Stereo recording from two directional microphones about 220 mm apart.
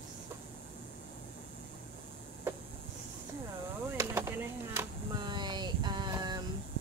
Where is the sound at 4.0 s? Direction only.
10° right (ahead or behind).